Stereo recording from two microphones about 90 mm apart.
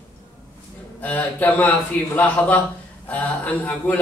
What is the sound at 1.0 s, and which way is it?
Speech, 20° left (ahead or behind).